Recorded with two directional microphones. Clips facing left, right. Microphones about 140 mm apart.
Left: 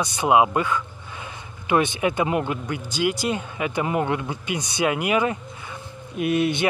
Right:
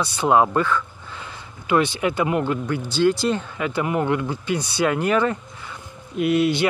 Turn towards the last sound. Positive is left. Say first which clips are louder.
# right 3 dB
turn(degrees=20)  # may be behind; listen again after turning